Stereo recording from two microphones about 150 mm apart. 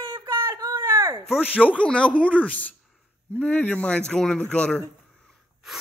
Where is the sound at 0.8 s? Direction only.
15° right (ahead or behind).